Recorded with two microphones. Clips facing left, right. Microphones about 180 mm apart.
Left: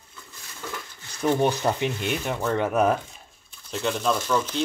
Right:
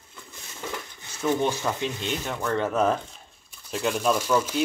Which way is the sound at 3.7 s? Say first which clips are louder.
Right 1 dB; 10° right (ahead or behind).